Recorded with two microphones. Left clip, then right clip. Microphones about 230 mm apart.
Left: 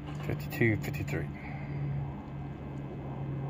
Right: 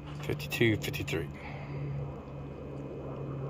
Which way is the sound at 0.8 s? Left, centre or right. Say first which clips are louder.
Right 3 dB; right.